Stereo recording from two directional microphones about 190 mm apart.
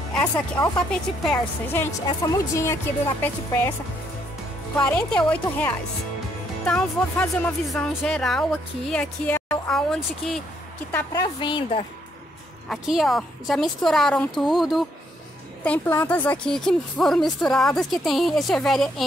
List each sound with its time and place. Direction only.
0.1 s speech: 5° left (ahead or behind)
2.0 s speech: 20° left (ahead or behind)
4.7 s speech: 5° left (ahead or behind)
11.3 s speech: 25° left (ahead or behind)
12.6 s speech: centre (ahead or behind)